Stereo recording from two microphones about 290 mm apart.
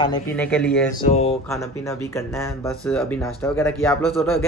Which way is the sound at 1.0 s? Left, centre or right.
Left.